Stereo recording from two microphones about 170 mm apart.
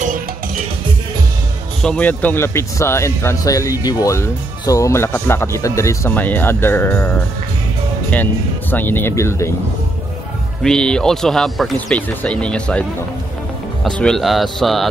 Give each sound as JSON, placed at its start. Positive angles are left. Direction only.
{"t": 1.8, "sound": "speech", "side_deg": 5}
{"t": 10.6, "sound": "speech", "side_deg": 5}
{"t": 13.8, "sound": "speech", "side_deg": 5}